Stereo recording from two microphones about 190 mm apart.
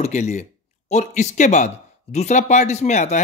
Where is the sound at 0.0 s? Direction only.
35° left (ahead or behind).